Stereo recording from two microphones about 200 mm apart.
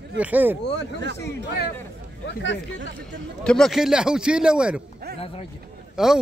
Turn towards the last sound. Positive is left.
turn(degrees=0)  # may be behind; listen again after turning